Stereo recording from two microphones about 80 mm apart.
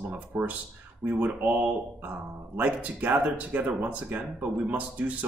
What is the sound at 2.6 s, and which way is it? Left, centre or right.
Speech, centre.